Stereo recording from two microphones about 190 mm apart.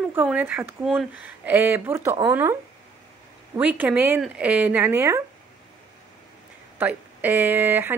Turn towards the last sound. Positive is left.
turn(degrees=-10)  # may be behind; listen again after turning